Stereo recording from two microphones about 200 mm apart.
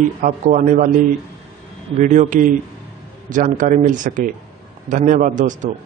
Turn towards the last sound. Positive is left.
turn(degrees=-40)  # may be behind; listen again after turning